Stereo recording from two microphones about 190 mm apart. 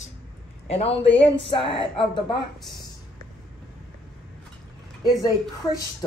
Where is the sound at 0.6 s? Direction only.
30° left (ahead or behind).